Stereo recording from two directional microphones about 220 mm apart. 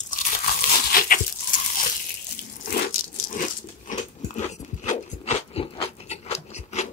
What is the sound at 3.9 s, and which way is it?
Dog, 30° left (ahead or behind).